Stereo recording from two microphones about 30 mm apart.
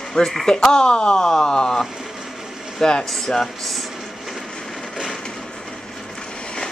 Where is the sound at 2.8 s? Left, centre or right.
Centre.